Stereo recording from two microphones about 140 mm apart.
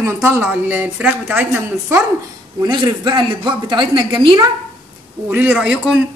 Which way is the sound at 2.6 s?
30° right (ahead or behind).